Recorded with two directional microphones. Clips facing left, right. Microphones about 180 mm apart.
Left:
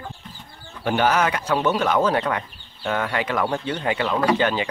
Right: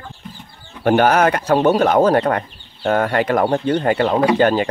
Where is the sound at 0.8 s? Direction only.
50° right (ahead or behind).